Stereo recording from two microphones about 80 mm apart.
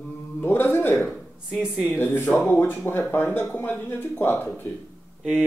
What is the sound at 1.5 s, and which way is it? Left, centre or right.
Speech, centre.